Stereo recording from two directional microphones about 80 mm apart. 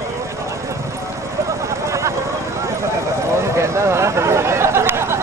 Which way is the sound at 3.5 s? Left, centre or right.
Right.